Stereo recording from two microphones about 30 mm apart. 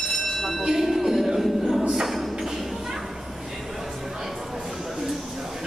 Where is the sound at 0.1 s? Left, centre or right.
Centre.